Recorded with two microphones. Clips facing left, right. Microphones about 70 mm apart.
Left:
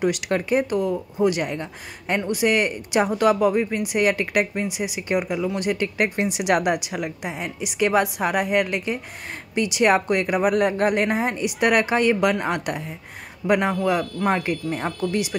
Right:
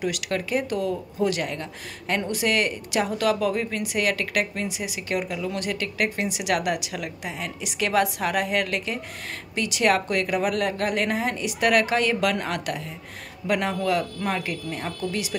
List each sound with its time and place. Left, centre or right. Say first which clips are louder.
0.0 s speech: left 5 dB; left